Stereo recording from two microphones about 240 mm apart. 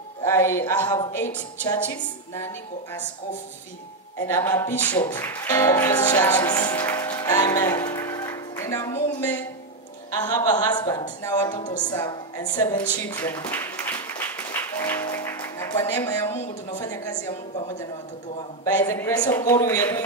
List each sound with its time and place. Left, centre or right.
0.2 s speech: centre
4.3 s a woman's voice: centre
12.5 s a sound: centre
18.6 s speech: centre